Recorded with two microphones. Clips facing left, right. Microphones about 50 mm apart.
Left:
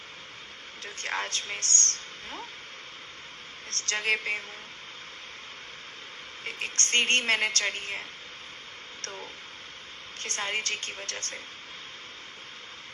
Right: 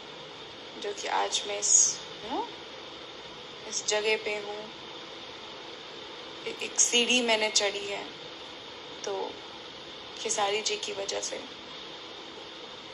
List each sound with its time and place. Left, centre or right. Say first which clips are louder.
0.8 s a woman's voice: right 4 dB; left
3.7 s a woman's voice: right 1 dB; left
6.4 s a woman's voice: left 2 dB; left
10.2 s a woman's voice: right 3 dB; left